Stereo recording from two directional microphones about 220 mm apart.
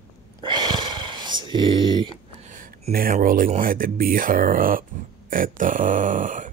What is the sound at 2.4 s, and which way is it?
Speech, 35° right (ahead or behind).